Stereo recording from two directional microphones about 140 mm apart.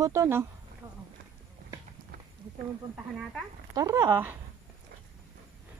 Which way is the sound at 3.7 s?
25° right (ahead or behind).